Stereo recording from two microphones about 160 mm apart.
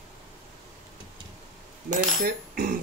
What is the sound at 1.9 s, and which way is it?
Cutlery, 60° right (ahead or behind).